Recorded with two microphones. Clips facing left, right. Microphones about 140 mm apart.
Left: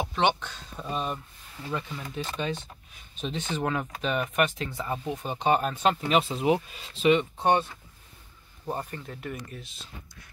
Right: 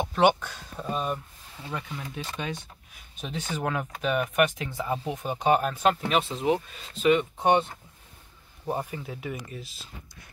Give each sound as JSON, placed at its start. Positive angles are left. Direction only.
{"t": 0.1, "sound": "speech", "side_deg": -5}
{"t": 7.3, "sound": "speech", "side_deg": -15}